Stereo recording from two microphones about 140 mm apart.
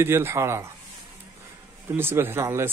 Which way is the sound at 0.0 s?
15° right (ahead or behind).